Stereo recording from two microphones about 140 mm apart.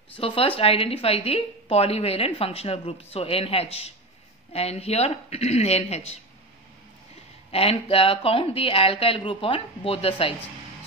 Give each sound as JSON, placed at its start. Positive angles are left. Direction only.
{"t": 0.1, "sound": "a woman's voice", "side_deg": 40}
{"t": 7.5, "sound": "speech", "side_deg": 45}